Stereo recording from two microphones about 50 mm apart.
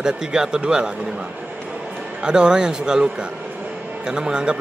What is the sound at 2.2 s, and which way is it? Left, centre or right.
Speech, centre.